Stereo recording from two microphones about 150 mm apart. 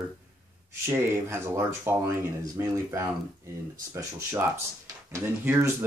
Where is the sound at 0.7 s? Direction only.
15° right (ahead or behind).